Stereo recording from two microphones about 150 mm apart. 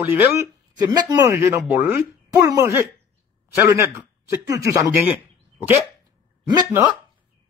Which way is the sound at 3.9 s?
20° right (ahead or behind).